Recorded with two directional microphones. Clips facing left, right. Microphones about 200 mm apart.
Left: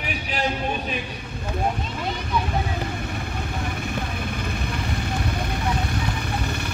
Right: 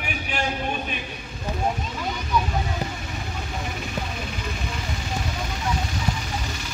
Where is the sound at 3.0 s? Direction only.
55° left (ahead or behind).